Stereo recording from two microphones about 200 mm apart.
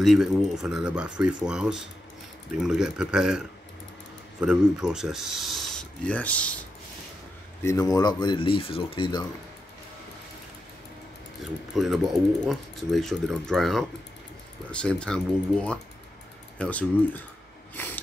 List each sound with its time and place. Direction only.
0.0 s speech: centre (ahead or behind)
7.6 s speech: 15° left (ahead or behind)
11.7 s speech: centre (ahead or behind)
17.7 s a sound: 10° left (ahead or behind)